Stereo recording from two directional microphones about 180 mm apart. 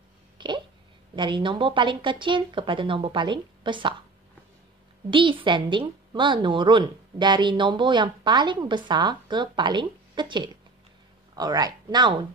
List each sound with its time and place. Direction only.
0.4 s a sound: 25° right (ahead or behind)
1.1 s a woman's voice: 25° right (ahead or behind)
5.1 s a woman's voice: 25° right (ahead or behind)